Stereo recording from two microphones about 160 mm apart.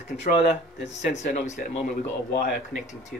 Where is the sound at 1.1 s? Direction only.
50° left (ahead or behind).